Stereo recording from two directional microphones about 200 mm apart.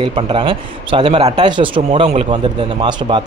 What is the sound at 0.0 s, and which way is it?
A man's voice, 25° right (ahead or behind).